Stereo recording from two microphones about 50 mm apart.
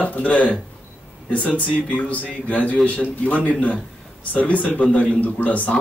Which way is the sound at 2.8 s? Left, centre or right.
Centre.